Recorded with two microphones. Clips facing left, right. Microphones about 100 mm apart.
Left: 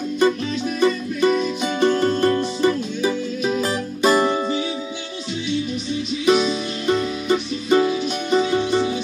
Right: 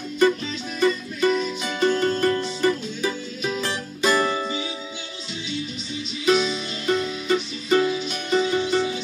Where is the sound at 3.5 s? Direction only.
30° left (ahead or behind).